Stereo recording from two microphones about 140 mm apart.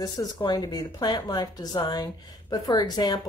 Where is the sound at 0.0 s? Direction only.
30° left (ahead or behind).